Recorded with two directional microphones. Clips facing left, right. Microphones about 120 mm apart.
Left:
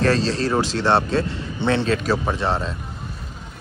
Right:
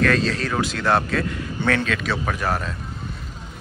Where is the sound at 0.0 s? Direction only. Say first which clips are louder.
Left 1 dB; 30° left (ahead or behind).